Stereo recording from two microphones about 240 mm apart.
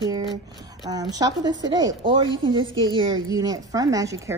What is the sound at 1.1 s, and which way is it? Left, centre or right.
A woman's voice, centre.